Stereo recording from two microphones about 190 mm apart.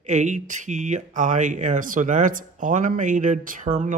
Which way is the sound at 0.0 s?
40° right (ahead or behind).